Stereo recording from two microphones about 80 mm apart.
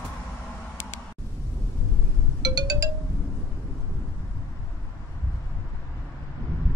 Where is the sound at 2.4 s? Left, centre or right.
Right.